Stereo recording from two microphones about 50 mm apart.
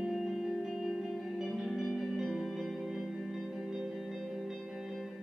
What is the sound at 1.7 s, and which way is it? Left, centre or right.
Music, centre.